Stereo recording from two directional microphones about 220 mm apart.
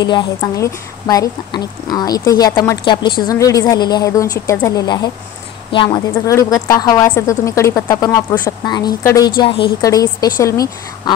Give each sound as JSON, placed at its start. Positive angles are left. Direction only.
{"t": 0.0, "sound": "speech", "side_deg": 20}
{"t": 6.1, "sound": "speech", "side_deg": 15}